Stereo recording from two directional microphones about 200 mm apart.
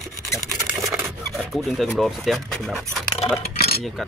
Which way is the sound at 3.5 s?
50° left (ahead or behind).